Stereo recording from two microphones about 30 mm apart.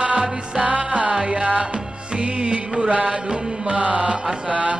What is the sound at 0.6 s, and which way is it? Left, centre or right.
Music, right.